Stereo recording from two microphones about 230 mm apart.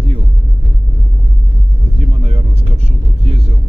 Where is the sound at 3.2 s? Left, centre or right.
Right.